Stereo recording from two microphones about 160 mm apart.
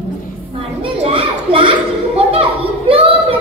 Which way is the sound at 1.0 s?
35° right (ahead or behind).